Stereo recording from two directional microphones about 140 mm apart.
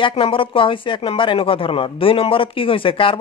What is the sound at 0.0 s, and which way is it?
Speech, 40° left (ahead or behind).